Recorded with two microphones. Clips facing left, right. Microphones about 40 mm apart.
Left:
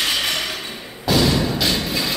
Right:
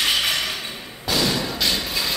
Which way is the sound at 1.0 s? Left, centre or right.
Centre.